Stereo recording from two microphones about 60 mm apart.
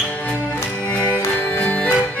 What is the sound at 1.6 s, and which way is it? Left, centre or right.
Accordion, left.